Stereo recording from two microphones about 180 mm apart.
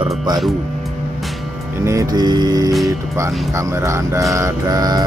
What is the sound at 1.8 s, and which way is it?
Music, 20° right (ahead or behind).